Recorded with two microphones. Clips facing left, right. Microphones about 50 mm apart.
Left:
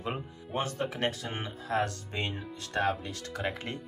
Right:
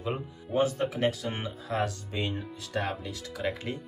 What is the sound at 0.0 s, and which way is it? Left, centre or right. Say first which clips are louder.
Speech: right 2 dB; left.